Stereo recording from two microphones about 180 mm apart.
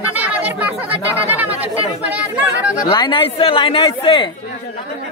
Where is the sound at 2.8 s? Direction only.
25° left (ahead or behind).